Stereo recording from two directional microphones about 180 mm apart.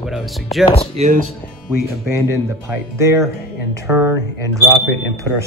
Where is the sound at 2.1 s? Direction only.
15° right (ahead or behind).